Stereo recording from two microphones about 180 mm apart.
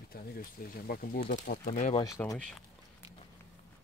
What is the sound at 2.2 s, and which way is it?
Speech, 10° left (ahead or behind).